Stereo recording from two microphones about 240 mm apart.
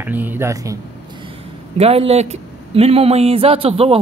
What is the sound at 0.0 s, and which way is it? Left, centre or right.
Speech, centre.